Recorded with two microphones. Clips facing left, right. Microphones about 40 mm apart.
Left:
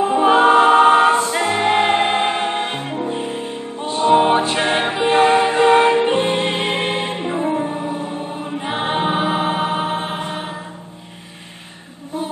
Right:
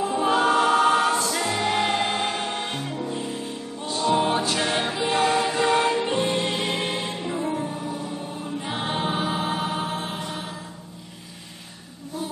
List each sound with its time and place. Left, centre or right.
0.0 s music: left